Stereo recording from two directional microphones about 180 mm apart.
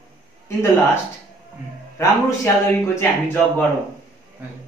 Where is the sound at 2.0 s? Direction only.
15° left (ahead or behind).